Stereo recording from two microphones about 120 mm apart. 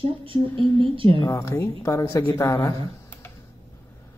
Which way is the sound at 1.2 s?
25° left (ahead or behind).